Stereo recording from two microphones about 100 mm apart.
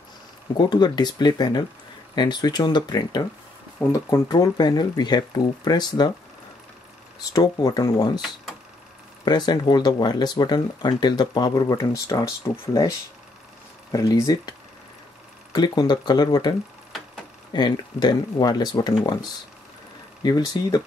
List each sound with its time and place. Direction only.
0.6 s speech: 45° left (ahead or behind)
7.3 s speech: 40° left (ahead or behind)
9.2 s speech: 45° left (ahead or behind)
13.9 s speech: 35° left (ahead or behind)
15.5 s speech: 45° left (ahead or behind)
20.2 s speech: 45° left (ahead or behind)